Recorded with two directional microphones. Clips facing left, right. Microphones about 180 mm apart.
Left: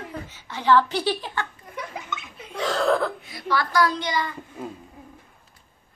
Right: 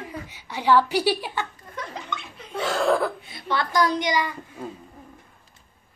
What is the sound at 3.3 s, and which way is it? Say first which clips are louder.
A child's voice: left 1 dB; 25° right (ahead or behind).